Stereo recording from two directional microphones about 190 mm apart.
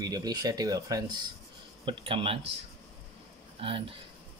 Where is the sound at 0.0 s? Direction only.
20° right (ahead or behind).